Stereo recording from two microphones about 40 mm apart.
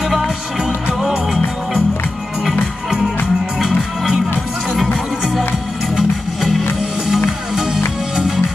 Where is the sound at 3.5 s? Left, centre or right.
Centre.